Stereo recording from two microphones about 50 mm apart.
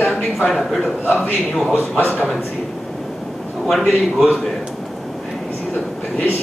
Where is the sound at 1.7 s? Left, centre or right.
Left.